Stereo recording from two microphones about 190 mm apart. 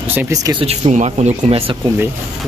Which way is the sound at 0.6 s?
35° right (ahead or behind).